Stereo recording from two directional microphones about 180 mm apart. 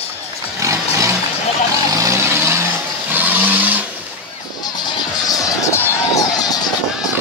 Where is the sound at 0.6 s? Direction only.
15° right (ahead or behind).